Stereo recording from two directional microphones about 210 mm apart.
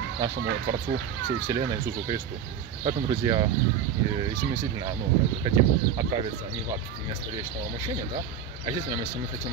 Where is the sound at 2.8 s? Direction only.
20° right (ahead or behind).